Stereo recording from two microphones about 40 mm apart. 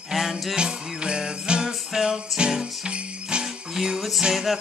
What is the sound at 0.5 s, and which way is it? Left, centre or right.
Music, right.